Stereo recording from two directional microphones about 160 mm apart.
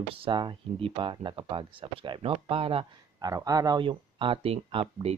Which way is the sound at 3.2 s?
25° right (ahead or behind).